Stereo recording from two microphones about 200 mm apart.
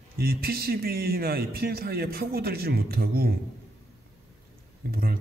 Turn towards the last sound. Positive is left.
turn(degrees=-50)  # may be behind; listen again after turning